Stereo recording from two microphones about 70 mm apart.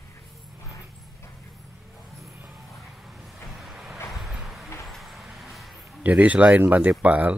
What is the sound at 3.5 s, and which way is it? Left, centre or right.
Vehicle, centre.